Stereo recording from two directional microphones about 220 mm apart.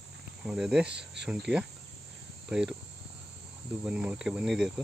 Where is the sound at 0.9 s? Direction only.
50° right (ahead or behind).